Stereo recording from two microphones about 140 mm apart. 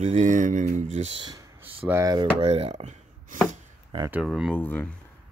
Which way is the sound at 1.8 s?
15° right (ahead or behind).